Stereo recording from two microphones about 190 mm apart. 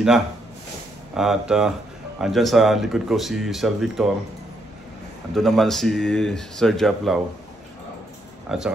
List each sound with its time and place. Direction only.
1.1 s speech: centre (ahead or behind)
5.3 s speech: centre (ahead or behind)
8.5 s speech: 5° right (ahead or behind)